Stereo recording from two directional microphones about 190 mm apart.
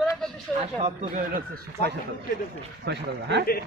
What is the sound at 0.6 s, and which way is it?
Speech, 35° right (ahead or behind).